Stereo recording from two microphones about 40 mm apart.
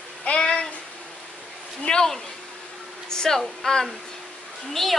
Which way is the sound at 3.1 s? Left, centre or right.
Centre.